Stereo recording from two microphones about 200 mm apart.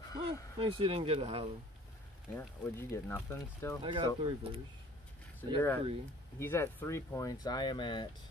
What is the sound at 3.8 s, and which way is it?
Speech, 25° right (ahead or behind).